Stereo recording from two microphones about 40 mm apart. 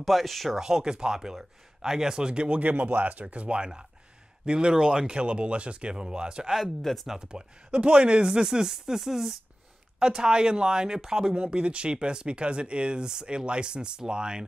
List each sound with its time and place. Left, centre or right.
0.0 s speech: centre
0.6 s speech: centre
2.6 s speech: right
6.8 s speech: centre
7.1 s speech: centre
11.4 s speech: right